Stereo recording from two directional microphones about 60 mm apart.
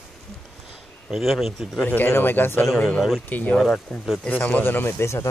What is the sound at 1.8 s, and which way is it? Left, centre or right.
A man's voice, left.